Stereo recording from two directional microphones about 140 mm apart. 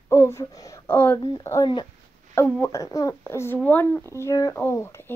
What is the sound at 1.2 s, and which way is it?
Speech, 25° left (ahead or behind).